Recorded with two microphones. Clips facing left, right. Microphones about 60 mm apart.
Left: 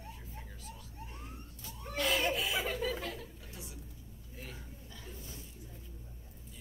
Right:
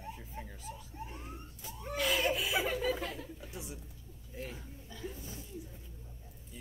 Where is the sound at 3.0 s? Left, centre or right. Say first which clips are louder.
Right 1 dB; right.